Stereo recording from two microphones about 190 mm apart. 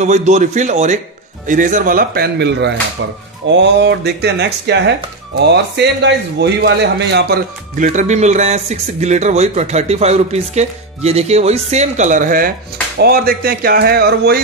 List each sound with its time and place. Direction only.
0.0 s a man's voice: 40° right (ahead or behind); by 7.3 s 65° right (ahead or behind)
7.7 s a man's voice: 40° right (ahead or behind)